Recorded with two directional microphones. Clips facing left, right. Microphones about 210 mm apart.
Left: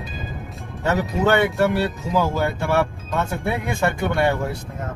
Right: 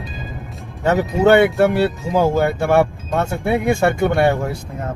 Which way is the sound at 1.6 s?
50° right (ahead or behind).